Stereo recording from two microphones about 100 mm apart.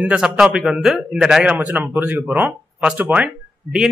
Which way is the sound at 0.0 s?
10° right (ahead or behind).